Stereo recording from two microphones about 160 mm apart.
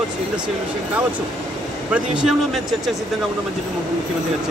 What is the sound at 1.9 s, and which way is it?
Speech, 5° right (ahead or behind).